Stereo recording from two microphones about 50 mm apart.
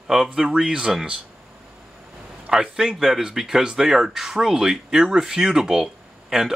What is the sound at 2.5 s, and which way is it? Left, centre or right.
A man's voice, centre.